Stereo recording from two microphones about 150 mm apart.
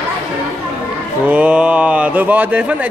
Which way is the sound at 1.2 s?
10° right (ahead or behind).